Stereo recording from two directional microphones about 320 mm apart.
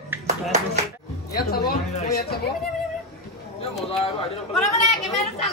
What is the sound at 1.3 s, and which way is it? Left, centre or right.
A woman's voice, left.